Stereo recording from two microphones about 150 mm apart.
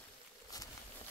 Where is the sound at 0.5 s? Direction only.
25° left (ahead or behind).